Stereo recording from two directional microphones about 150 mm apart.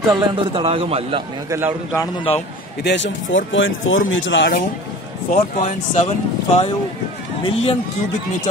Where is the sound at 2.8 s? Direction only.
90° left.